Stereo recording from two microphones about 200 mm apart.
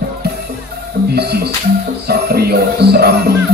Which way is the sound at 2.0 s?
50° right (ahead or behind).